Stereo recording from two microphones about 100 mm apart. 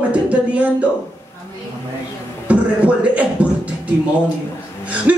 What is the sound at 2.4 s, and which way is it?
Speech, 15° right (ahead or behind).